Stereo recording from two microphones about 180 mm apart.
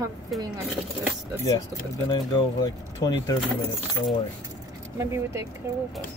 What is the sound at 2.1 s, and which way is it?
Speech, 25° left (ahead or behind).